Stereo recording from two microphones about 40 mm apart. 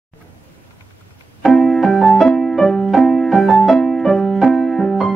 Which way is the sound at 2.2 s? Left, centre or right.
Centre.